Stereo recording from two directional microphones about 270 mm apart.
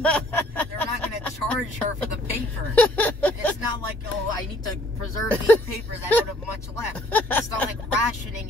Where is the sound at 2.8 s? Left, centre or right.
Centre.